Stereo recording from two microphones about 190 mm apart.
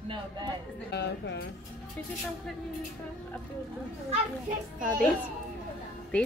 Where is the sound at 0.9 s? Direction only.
60° left (ahead or behind).